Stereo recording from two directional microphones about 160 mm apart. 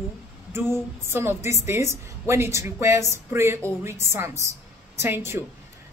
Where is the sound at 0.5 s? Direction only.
15° right (ahead or behind).